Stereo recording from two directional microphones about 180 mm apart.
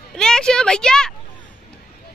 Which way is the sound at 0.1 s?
5° left (ahead or behind).